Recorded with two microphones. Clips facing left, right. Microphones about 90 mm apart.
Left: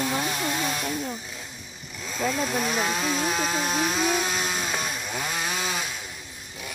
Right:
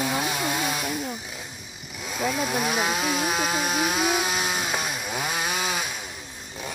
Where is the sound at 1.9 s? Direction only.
10° right (ahead or behind).